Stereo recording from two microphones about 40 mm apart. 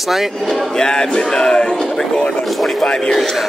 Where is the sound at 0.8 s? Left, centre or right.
Centre.